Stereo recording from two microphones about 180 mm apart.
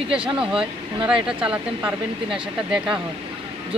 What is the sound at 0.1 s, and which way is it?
Speech, 5° right (ahead or behind).